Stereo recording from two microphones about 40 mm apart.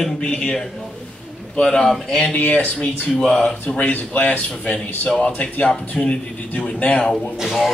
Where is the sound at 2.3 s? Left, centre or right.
Left.